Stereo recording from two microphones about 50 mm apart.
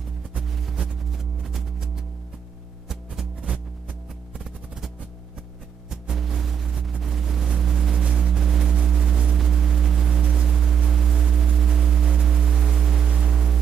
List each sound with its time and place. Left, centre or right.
0.5 s music: centre
0.7 s music: centre
3.3 s music: right
6.1 s vehicle: centre
8.0 s a sound: centre